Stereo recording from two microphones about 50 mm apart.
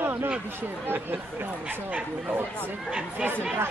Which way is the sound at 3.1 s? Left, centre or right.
Right.